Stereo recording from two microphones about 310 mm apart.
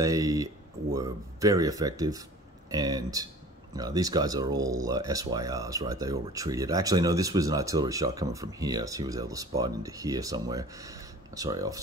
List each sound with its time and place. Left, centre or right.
0.0 s speech: centre